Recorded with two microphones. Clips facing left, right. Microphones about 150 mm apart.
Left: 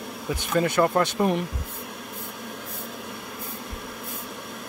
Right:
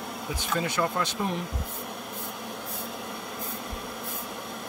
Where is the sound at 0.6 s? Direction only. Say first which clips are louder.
Left 8 dB; 55° left (ahead or behind).